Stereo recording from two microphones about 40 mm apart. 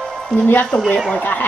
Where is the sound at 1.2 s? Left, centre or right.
Left.